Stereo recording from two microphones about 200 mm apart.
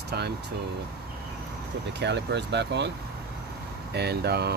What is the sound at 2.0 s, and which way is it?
Speech, 60° right (ahead or behind).